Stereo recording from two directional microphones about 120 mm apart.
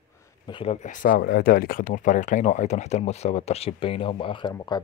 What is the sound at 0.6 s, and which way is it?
Speech, 80° left.